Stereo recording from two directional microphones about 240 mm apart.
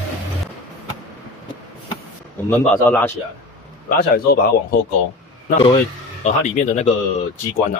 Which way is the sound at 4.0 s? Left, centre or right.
Left.